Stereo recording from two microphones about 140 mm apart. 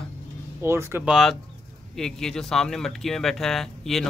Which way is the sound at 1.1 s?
Centre (ahead or behind).